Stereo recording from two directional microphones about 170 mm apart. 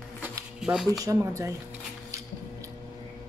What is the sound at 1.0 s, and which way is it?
Speech, 20° right (ahead or behind).